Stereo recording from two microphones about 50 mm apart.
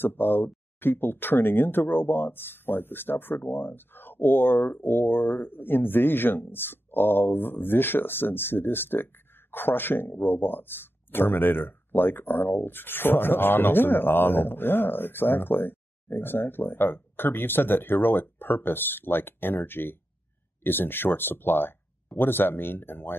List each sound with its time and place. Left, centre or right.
0.0 s speech: left